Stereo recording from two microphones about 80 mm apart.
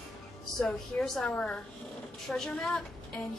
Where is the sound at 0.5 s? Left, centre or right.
Centre.